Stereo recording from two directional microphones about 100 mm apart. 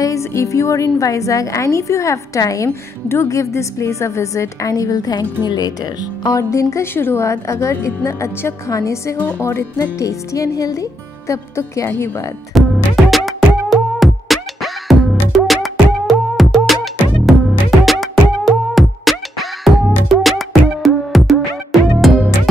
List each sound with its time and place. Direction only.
0.0 s a woman's voice: 30° left (ahead or behind)
6.2 s a woman's voice: 35° left (ahead or behind)
12.5 s music: centre (ahead or behind)